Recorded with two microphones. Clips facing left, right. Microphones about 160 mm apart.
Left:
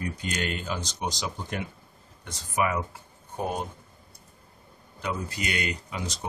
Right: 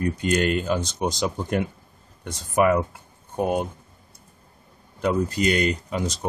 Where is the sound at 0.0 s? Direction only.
50° right (ahead or behind).